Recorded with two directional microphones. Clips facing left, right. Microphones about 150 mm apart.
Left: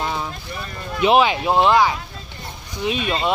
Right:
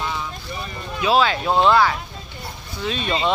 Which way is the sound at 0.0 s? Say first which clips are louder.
Left 2 dB; 45° left (ahead or behind).